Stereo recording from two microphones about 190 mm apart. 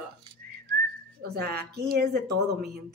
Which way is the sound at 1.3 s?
55° right (ahead or behind).